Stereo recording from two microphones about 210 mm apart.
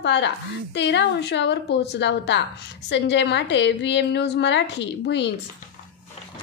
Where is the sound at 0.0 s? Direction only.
55° left (ahead or behind).